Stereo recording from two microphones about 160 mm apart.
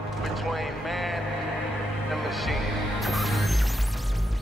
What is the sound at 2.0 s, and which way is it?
Music, centre (ahead or behind).